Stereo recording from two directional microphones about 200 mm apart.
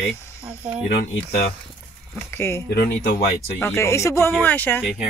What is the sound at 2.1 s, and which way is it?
Speech, 10° left (ahead or behind).